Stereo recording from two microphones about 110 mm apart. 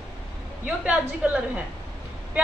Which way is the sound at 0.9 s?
10° right (ahead or behind).